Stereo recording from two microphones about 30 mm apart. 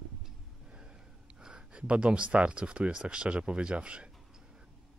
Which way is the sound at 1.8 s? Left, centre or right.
Right.